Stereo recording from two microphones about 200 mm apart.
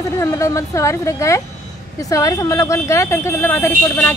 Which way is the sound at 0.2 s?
15° left (ahead or behind).